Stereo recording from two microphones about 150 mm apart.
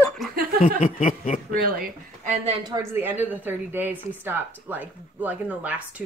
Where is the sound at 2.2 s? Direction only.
45° right (ahead or behind).